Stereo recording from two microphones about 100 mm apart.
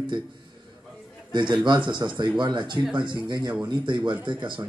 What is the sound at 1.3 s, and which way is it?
A man's voice, 50° right (ahead or behind).